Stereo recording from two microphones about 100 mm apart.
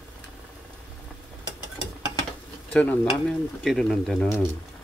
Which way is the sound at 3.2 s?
5° left (ahead or behind).